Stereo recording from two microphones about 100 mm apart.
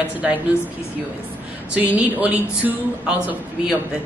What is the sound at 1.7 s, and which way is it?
A woman's voice, 15° right (ahead or behind).